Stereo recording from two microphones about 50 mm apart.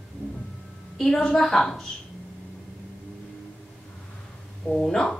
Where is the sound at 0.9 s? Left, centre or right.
Centre.